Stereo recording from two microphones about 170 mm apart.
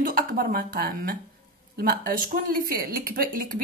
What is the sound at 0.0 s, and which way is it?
Speech, 60° right (ahead or behind).